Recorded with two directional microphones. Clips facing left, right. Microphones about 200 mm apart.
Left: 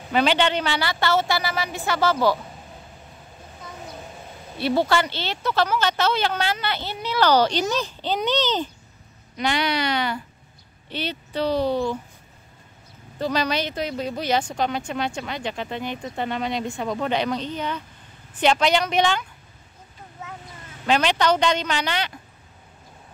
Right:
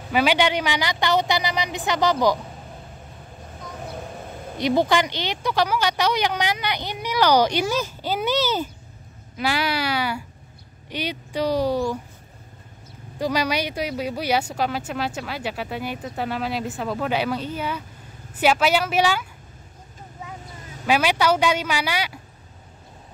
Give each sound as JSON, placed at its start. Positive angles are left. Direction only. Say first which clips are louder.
{"t": 0.1, "sound": "speech", "louder": "even", "side_deg": -10}
{"t": 4.6, "sound": "speech", "louder": "right 1 dB", "side_deg": -15}
{"t": 13.2, "sound": "speech", "louder": "right 1 dB", "side_deg": -10}
{"t": 20.8, "sound": "speech", "louder": "even", "side_deg": -10}